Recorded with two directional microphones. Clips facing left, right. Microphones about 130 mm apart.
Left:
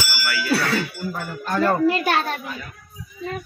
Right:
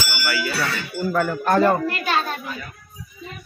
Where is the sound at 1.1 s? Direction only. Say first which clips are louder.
Right 10 dB; 75° right (ahead or behind); by 1.6 s 60° right (ahead or behind).